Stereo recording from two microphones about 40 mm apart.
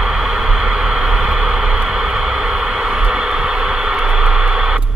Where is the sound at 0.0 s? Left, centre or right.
Centre.